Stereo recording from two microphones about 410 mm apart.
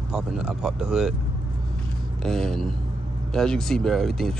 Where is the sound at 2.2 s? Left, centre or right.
Centre.